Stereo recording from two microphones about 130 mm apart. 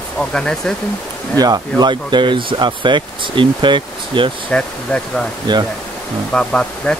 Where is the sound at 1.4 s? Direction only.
30° right (ahead or behind).